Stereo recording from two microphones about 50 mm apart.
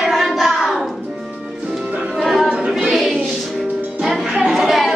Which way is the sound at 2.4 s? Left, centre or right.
Right.